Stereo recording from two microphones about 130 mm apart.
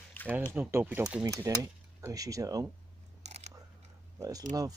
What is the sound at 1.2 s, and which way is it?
Speech, 25° right (ahead or behind).